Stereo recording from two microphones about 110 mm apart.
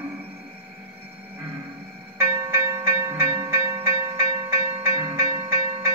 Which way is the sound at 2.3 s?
25° right (ahead or behind).